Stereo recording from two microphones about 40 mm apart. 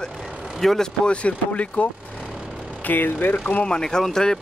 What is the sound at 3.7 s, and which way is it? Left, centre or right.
Speech, centre.